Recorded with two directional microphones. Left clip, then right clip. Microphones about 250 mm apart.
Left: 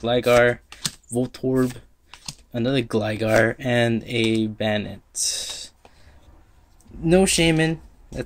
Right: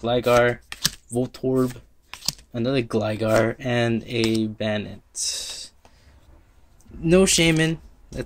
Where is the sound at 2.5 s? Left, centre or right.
Centre.